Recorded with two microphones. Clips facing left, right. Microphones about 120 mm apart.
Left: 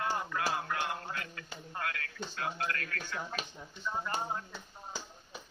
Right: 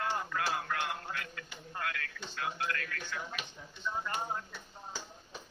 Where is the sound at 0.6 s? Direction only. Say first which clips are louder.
Left 1 dB; 25° left (ahead or behind).